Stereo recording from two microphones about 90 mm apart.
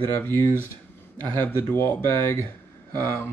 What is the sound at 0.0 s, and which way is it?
Speech, 25° left (ahead or behind).